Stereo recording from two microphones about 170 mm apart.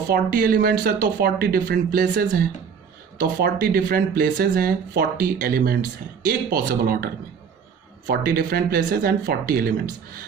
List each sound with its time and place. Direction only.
0.1 s speech: 60° right (ahead or behind)
8.1 s speech: 65° right (ahead or behind)